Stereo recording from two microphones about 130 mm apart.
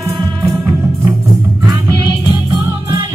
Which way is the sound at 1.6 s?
30° right (ahead or behind).